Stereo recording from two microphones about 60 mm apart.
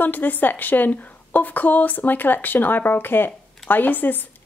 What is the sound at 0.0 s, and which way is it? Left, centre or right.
A woman's voice, left.